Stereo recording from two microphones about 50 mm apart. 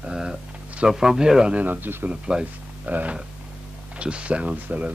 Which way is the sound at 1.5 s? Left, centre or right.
Right.